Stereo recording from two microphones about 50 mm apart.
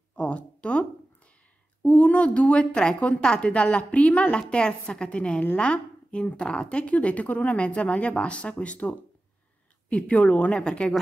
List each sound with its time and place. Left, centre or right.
0.1 s a sound: left
1.8 s a woman's voice: left
10.5 s speech: centre